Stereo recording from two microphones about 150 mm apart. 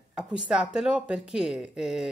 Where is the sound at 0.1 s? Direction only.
5° right (ahead or behind).